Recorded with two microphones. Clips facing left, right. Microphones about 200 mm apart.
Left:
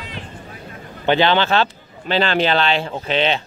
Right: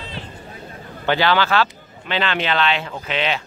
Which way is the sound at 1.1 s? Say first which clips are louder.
Left 2 dB; 25° left (ahead or behind).